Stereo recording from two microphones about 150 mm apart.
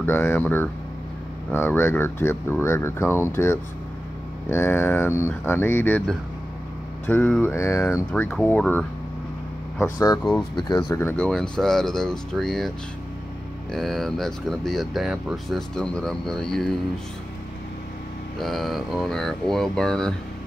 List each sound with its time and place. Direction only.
0.0 s speech: 15° left (ahead or behind)
8.1 s speech: 5° left (ahead or behind); by 11.0 s 30° left (ahead or behind)
11.0 s speech: 10° left (ahead or behind)
18.4 s speech: centre (ahead or behind)